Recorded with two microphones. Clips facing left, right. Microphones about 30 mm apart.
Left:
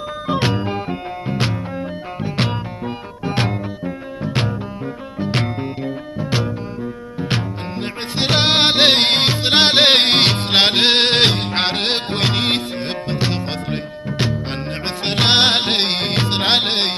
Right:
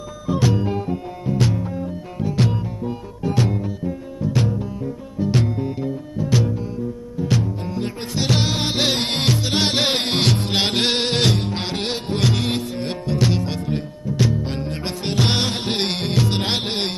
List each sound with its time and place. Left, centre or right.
0.3 s music: left
5.8 s music: left
9.2 s music: left
11.4 s music: left